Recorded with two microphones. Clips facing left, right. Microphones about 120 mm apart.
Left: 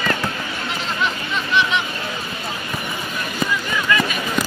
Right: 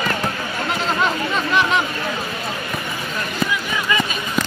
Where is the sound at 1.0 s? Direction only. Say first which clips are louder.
Right 3 dB; 40° right (ahead or behind).